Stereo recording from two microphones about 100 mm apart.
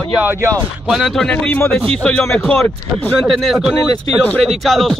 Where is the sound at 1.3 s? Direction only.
15° left (ahead or behind).